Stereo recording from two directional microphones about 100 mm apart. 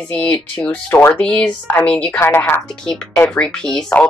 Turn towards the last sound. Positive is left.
turn(degrees=5)  # may be behind; listen again after turning